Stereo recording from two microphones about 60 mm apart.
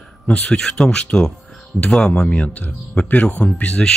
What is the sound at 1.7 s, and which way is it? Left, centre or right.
Speech, centre.